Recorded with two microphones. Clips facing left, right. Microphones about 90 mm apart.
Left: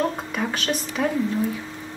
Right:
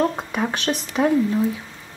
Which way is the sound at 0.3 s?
10° right (ahead or behind).